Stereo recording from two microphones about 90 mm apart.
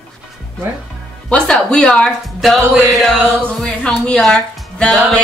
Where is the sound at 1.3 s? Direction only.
10° left (ahead or behind).